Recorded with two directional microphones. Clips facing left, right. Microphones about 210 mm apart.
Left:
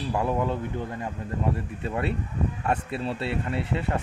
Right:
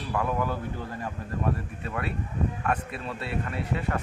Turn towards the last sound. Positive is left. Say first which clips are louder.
# left 2 dB
turn(degrees=25)  # may be behind; listen again after turning